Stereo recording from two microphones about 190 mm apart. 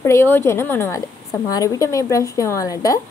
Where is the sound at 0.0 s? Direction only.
15° left (ahead or behind).